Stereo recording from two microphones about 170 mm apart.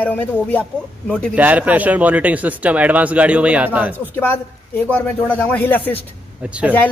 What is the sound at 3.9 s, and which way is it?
Speech, 10° left (ahead or behind).